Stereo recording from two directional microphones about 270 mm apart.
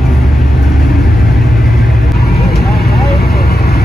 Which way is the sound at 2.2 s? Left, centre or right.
Left.